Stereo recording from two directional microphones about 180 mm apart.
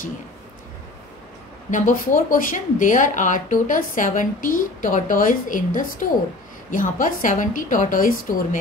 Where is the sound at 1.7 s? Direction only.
45° left (ahead or behind).